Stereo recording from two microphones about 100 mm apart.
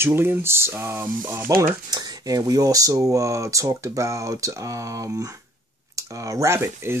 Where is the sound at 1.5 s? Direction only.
35° right (ahead or behind).